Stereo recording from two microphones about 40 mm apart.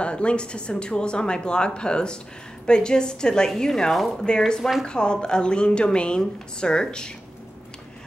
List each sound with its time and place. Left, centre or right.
0.0 s a woman's voice: left; by 4.0 s centre
4.6 s speech: centre
4.8 s a woman's voice: left